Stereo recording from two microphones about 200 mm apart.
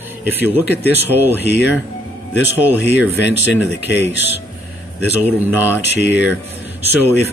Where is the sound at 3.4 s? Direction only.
60° left (ahead or behind).